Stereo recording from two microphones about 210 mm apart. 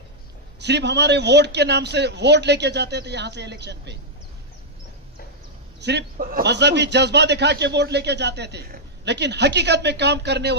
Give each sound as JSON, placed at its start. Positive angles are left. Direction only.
{"t": 0.6, "sound": "a man's voice", "side_deg": -55}
{"t": 5.8, "sound": "a man's voice", "side_deg": -55}